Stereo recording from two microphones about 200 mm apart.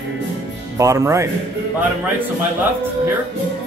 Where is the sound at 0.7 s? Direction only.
15° right (ahead or behind).